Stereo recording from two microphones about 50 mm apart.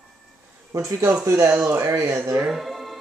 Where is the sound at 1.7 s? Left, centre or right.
Right.